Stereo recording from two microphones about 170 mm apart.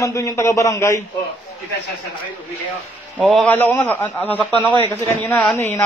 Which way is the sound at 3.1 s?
Centre (ahead or behind).